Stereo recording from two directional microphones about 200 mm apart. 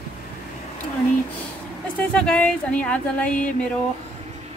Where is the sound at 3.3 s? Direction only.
40° left (ahead or behind).